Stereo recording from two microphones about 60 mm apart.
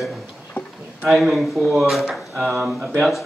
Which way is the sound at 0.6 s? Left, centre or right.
Left.